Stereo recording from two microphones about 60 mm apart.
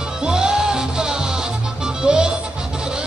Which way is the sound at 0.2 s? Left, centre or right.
Centre.